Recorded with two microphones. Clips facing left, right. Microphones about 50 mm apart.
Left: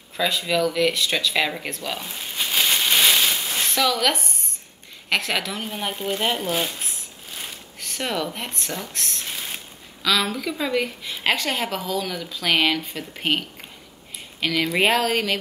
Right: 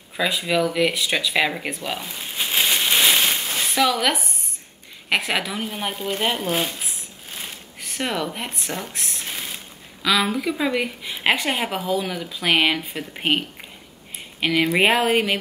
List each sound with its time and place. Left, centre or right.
0.2 s speech: centre
2.3 s a sound: centre
3.5 s speech: centre
6.4 s speech: right
7.8 s speech: centre